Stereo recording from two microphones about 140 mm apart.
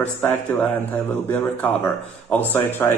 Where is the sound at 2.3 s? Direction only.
15° left (ahead or behind).